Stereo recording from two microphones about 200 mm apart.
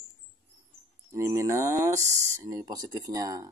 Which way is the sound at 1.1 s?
15° right (ahead or behind).